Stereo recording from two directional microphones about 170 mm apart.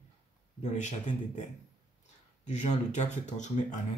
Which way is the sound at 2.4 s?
40° left (ahead or behind).